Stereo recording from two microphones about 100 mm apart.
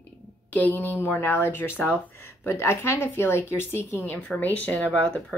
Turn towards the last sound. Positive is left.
turn(degrees=10)  # may be behind; listen again after turning